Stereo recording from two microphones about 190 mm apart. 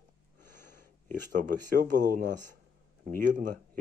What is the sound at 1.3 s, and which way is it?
Speech, 45° right (ahead or behind).